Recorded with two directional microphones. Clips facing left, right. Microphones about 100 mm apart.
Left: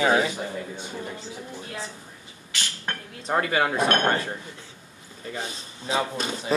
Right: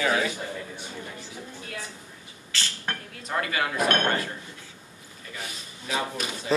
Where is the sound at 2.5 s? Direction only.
15° left (ahead or behind).